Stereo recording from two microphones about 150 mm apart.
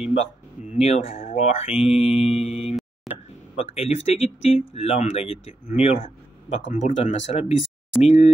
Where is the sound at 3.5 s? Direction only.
45° left (ahead or behind).